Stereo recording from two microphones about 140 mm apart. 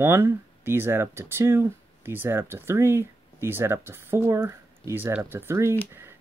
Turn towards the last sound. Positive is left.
turn(degrees=-20)  # may be behind; listen again after turning